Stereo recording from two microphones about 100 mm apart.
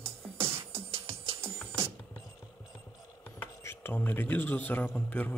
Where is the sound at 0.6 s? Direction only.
75° right (ahead or behind).